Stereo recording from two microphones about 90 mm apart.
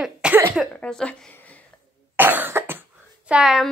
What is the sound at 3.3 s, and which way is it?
Speech, 5° right (ahead or behind).